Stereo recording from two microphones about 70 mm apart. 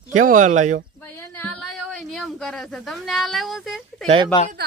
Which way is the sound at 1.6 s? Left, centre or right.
Centre.